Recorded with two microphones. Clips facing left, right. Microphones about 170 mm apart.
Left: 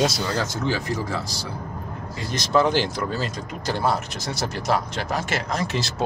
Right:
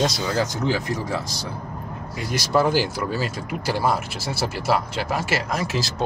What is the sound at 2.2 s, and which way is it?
Speech, 5° right (ahead or behind).